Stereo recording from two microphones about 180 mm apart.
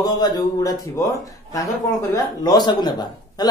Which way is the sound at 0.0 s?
20° left (ahead or behind).